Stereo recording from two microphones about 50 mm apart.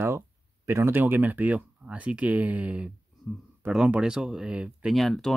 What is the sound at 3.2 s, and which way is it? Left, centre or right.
Speech, left.